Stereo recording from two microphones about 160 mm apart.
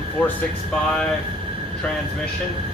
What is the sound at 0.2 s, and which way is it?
Speech, 10° left (ahead or behind).